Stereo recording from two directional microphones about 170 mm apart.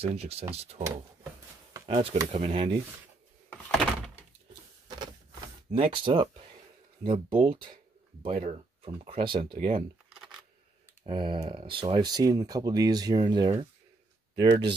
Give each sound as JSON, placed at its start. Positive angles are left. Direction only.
{"t": 0.0, "sound": "speech", "side_deg": -35}
{"t": 1.9, "sound": "speech", "side_deg": -40}
{"t": 4.8, "sound": "printer", "side_deg": -25}
{"t": 5.7, "sound": "speech", "side_deg": -35}
{"t": 11.1, "sound": "speech", "side_deg": -30}